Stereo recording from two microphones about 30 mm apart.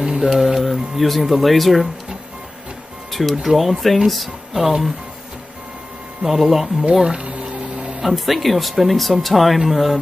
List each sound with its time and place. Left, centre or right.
0.0 s music: right
0.3 s speech: centre
3.1 s music: centre
3.4 s speech: centre
6.2 s speech: centre
7.2 s a sound: right
8.0 s speech: centre